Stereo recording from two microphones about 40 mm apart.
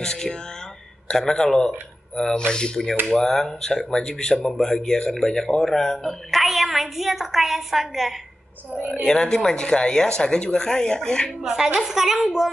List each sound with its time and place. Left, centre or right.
0.0 s a sound: centre
1.1 s speech: centre
6.3 s a woman's voice: centre
9.0 s speech: centre
11.4 s a woman's voice: centre